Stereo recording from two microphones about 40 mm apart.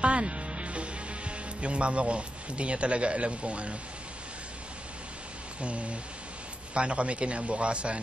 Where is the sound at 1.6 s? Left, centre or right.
Right.